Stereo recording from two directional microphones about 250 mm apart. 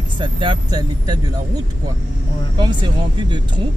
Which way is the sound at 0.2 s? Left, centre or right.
Centre.